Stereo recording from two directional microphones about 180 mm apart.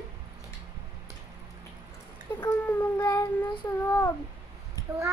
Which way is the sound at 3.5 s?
25° left (ahead or behind).